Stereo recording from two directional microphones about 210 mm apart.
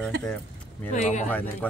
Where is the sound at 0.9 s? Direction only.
35° left (ahead or behind).